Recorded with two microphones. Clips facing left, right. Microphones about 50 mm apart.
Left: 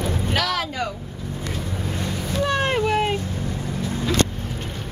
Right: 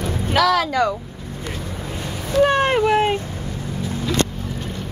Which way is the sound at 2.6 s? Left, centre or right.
Centre.